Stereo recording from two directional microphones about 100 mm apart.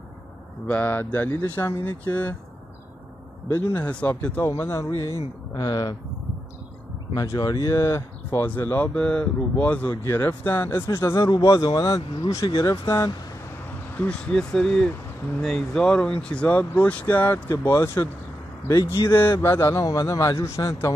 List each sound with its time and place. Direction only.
0.7 s speech: 20° left (ahead or behind)
3.4 s speech: 20° left (ahead or behind)
4.5 s speech: 25° left (ahead or behind)
5.5 s a man's voice: 40° left (ahead or behind)
7.2 s speech: 35° left (ahead or behind)
11.4 s a man's voice: 45° left (ahead or behind)
13.9 s a man's voice: 10° left (ahead or behind); by 20.9 s 30° left (ahead or behind)